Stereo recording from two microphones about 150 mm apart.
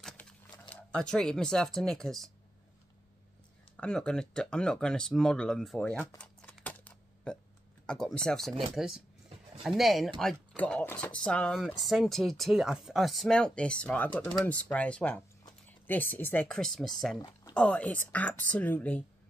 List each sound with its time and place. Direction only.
0.2 s a sound: 10° left (ahead or behind)
0.9 s speech: 5° left (ahead or behind)
3.7 s speech: 5° left (ahead or behind)
6.6 s typing: 10° left (ahead or behind)
7.8 s speech: 5° left (ahead or behind)
17.2 s a sound: 30° left (ahead or behind)
17.6 s speech: 10° left (ahead or behind)